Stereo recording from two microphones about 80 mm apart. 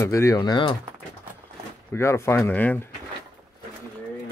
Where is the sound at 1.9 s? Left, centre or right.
Left.